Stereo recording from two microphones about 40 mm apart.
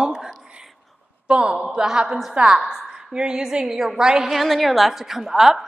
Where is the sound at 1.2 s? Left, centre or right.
Right.